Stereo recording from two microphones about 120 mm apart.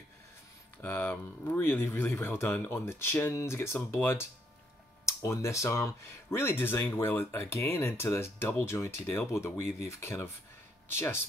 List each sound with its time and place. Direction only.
0.8 s speech: 15° left (ahead or behind)